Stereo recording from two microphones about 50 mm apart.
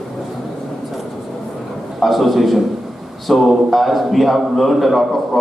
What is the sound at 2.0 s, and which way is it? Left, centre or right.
A man's voice, centre.